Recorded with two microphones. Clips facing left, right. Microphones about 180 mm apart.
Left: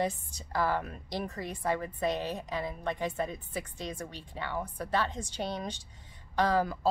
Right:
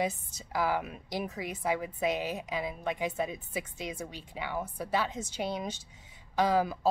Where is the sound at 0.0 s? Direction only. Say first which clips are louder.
Even; 10° right (ahead or behind).